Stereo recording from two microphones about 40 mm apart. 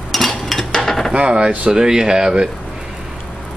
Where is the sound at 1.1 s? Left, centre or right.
Right.